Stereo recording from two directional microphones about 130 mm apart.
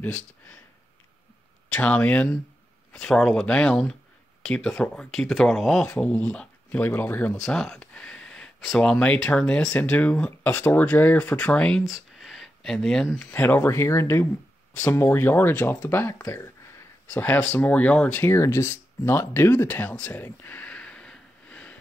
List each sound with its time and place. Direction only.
1.7 s speech: 10° left (ahead or behind)
5.9 s speech: 10° left (ahead or behind)
13.2 s speech: 15° left (ahead or behind)